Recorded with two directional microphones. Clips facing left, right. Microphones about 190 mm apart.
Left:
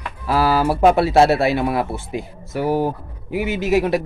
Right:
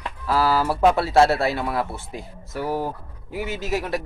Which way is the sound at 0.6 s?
15° left (ahead or behind).